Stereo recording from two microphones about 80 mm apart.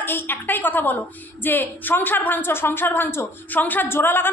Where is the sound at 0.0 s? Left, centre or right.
Left.